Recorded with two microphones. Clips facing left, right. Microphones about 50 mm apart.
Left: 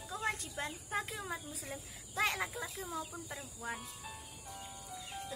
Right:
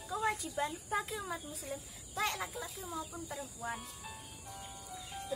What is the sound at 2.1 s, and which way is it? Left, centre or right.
Speech, left.